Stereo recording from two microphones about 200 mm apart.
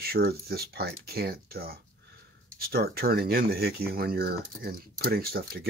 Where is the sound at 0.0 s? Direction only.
50° right (ahead or behind).